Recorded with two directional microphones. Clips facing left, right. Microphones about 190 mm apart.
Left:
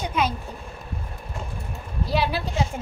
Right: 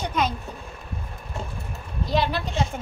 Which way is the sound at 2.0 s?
10° left (ahead or behind).